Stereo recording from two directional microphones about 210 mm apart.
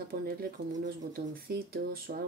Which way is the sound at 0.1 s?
45° right (ahead or behind).